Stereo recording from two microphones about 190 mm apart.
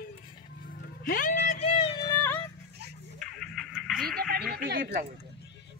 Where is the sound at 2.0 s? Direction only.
10° left (ahead or behind).